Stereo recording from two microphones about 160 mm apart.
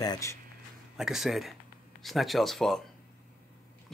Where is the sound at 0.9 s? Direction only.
5° right (ahead or behind).